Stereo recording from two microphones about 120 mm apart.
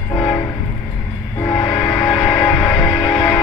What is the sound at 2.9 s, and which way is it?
Music, 25° left (ahead or behind).